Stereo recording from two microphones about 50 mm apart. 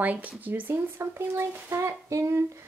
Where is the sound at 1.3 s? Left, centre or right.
Right.